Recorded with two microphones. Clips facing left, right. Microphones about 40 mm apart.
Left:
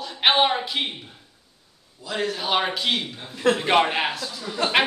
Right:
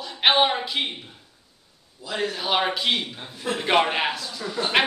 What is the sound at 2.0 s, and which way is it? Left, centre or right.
A man's voice, centre.